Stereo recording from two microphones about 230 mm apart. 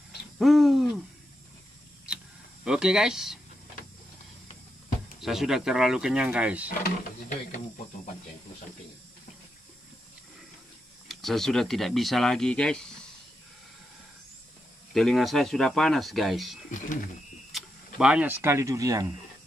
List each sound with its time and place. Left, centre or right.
0.4 s hoot: centre
2.6 s speech: centre
5.2 s speech: centre
6.8 s speech: left
11.1 s speech: centre
15.0 s speech: centre